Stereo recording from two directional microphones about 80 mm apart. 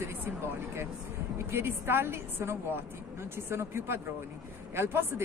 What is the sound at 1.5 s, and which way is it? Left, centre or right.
A woman's voice, right.